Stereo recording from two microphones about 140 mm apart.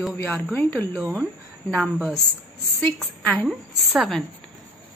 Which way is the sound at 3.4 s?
Centre (ahead or behind).